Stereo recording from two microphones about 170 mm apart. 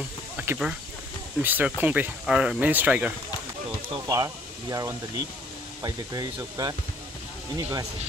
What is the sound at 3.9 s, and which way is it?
Speech, 20° right (ahead or behind).